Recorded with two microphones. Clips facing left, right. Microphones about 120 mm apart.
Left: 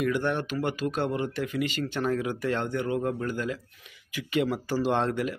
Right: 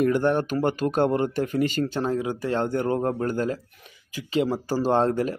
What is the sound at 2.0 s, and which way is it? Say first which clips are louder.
Speech: right 2 dB; 25° right (ahead or behind).